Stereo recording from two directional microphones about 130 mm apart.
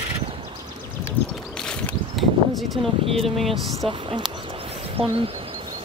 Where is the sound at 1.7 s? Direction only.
Centre (ahead or behind).